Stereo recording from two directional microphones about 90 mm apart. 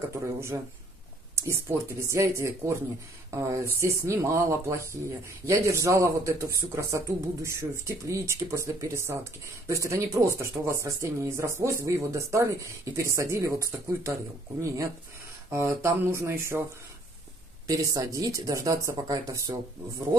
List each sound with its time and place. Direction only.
0.1 s speech: 30° right (ahead or behind)
15.5 s speech: 30° right (ahead or behind)
17.6 s speech: 40° right (ahead or behind)